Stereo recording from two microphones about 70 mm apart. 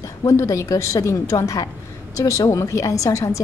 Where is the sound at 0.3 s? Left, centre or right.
Left.